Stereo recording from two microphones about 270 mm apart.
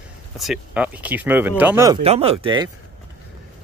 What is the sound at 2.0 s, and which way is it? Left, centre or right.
Speech, right.